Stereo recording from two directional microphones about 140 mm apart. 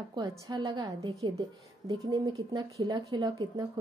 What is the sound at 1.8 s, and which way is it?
A woman's voice, 25° right (ahead or behind).